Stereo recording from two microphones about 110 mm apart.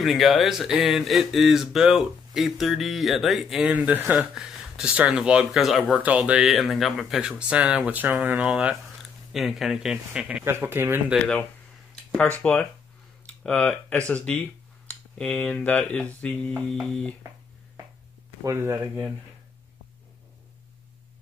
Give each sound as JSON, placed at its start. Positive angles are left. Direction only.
{"t": 0.0, "sound": "speech", "side_deg": 0}
{"t": 3.7, "sound": "speech", "side_deg": -15}
{"t": 10.4, "sound": "speech", "side_deg": -20}
{"t": 12.1, "sound": "speech", "side_deg": 10}
{"t": 18.4, "sound": "speech", "side_deg": -25}